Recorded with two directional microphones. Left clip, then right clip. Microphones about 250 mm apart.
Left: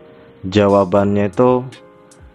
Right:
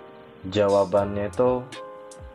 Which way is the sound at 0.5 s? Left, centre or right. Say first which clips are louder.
Left 7 dB; left.